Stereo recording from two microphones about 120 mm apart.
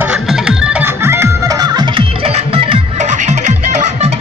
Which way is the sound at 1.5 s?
35° right (ahead or behind).